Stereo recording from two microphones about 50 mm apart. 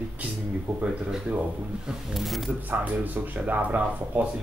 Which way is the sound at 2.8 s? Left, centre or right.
Right.